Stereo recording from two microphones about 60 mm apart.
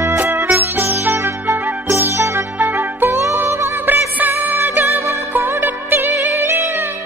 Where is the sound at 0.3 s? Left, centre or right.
Right.